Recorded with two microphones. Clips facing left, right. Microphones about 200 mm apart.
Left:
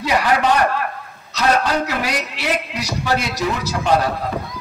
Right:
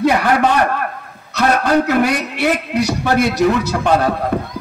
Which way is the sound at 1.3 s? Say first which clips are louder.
Right 4 dB; 55° right (ahead or behind).